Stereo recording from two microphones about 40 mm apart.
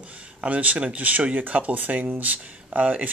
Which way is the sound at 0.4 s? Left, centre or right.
Right.